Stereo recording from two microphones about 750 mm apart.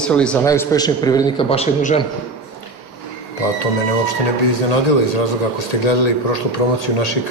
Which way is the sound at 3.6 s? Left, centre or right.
Left.